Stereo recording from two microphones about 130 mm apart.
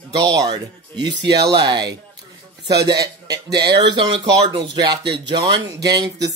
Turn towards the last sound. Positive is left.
turn(degrees=-30)  # may be behind; listen again after turning